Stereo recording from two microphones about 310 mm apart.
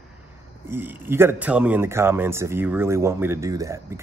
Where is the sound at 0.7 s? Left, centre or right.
Centre.